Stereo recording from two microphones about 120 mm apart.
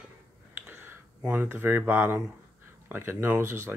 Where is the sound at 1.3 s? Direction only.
20° right (ahead or behind).